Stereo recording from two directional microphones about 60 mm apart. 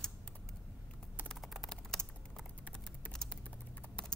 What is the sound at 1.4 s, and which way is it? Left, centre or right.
Typing, centre.